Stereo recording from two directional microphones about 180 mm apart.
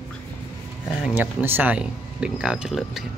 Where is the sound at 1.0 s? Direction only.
10° right (ahead or behind).